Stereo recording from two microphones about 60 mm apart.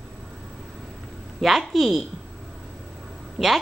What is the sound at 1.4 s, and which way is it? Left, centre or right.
Speech, centre.